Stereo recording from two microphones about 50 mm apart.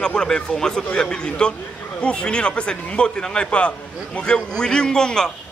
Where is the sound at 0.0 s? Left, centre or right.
Centre.